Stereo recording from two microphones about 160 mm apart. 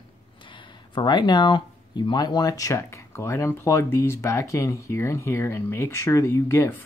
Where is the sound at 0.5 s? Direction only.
30° left (ahead or behind).